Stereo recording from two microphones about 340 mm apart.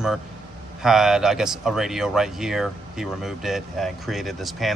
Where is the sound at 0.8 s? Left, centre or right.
Centre.